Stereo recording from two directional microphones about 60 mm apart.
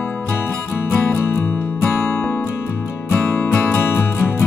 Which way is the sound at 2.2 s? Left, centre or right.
Centre.